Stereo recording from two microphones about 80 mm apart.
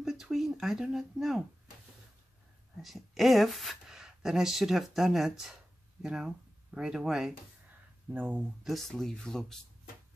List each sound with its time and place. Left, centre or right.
0.0 s a sound: centre
2.8 s speech: centre
8.1 s speech: right
8.6 s speech: centre